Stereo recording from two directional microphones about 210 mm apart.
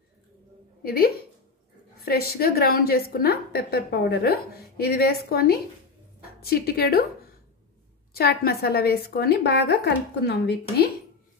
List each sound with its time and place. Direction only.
0.8 s a woman's voice: 45° left (ahead or behind)
8.1 s a woman's voice: 50° left (ahead or behind)